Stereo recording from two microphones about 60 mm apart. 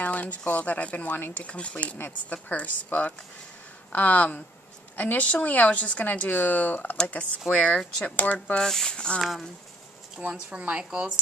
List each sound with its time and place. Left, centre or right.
0.0 s a sound: left
0.5 s speech: left
7.5 s speech: centre
8.5 s speech: centre
9.2 s speech: centre
10.2 s speech: centre